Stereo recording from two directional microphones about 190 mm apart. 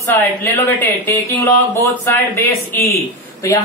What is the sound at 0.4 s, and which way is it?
Speech, 15° left (ahead or behind).